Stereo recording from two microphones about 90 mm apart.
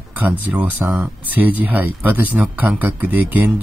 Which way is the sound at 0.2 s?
20° right (ahead or behind).